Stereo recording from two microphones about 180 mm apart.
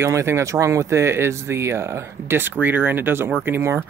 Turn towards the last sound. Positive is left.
turn(degrees=-15)  # may be behind; listen again after turning